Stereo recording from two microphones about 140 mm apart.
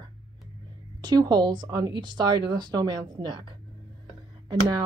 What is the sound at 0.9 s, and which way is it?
Speech, 30° right (ahead or behind).